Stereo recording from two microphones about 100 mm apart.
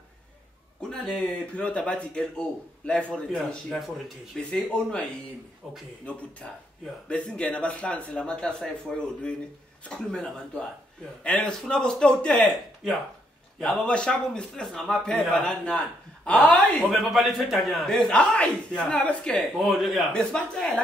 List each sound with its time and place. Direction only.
0.7 s speech: 5° left (ahead or behind)
6.4 s speech: 10° left (ahead or behind)
11.2 s a man's voice: 10° left (ahead or behind)